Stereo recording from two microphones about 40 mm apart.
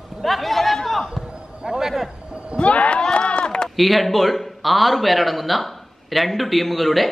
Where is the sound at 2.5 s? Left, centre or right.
Left.